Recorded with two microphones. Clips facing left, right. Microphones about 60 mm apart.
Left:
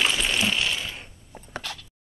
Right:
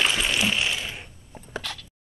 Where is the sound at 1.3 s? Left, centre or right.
Centre.